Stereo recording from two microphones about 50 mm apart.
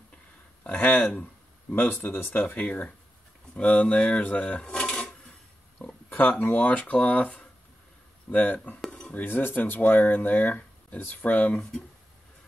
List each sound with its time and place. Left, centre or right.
0.7 s speech: left
2.5 s speech: left
4.6 s a sound: centre
6.0 s speech: left
9.1 s speech: left